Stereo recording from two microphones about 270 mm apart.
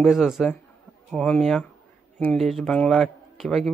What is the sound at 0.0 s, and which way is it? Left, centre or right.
A man's voice, centre.